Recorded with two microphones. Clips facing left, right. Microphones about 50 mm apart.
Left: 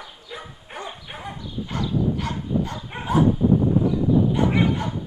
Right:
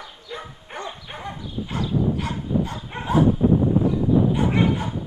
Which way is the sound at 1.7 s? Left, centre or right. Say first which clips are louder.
Right 1 dB; right.